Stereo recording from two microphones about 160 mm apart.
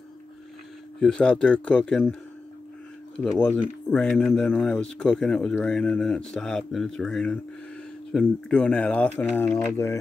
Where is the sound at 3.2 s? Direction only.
5° left (ahead or behind).